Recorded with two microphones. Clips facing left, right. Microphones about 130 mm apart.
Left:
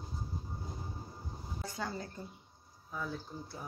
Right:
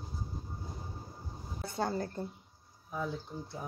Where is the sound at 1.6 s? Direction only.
50° right (ahead or behind).